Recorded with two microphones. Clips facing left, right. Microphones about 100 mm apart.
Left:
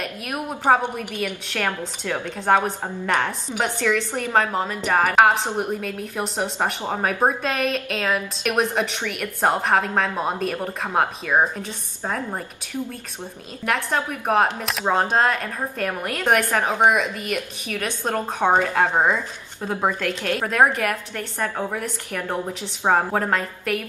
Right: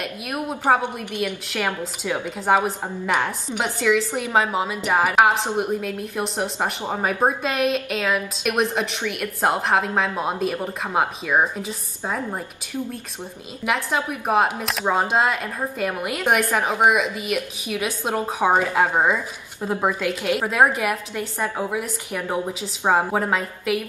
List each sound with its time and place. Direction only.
0.3 s a woman's voice: centre (ahead or behind)
5.1 s speech: centre (ahead or behind)
13.7 s speech: centre (ahead or behind)